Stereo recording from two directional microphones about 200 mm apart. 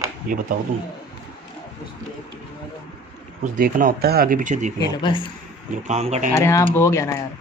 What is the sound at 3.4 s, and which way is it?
Speech, 40° right (ahead or behind).